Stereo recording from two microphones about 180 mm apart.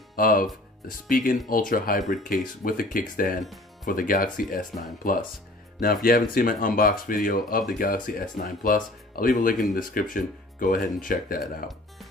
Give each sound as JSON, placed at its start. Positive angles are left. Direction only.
{"t": 0.1, "sound": "speech", "side_deg": 50}